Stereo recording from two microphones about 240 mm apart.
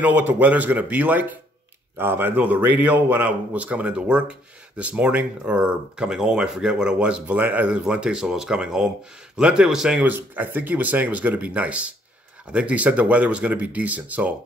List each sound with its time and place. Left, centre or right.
0.0 s a man's voice: centre